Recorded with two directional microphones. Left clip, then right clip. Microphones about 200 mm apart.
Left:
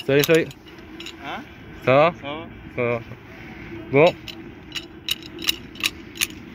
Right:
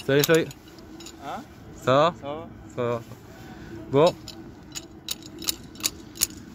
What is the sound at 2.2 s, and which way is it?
Speech, 15° right (ahead or behind).